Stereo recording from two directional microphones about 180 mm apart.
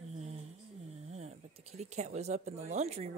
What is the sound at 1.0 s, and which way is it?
Speech, 35° right (ahead or behind).